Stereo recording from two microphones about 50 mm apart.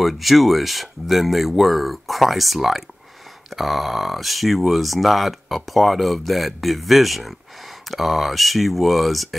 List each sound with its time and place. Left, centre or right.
0.0 s speech: centre